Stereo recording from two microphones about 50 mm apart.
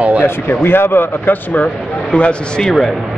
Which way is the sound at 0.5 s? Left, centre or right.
Left.